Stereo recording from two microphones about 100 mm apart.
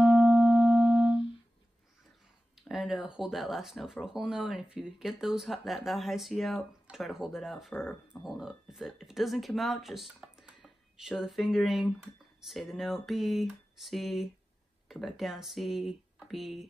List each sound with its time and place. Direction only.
0.0 s music: 10° right (ahead or behind)
2.7 s speech: 5° right (ahead or behind)
7.7 s speech: 20° left (ahead or behind)
8.3 s speech: 5° right (ahead or behind)